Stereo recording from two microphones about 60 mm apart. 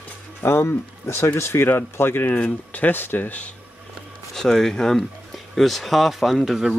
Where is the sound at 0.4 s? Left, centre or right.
Left.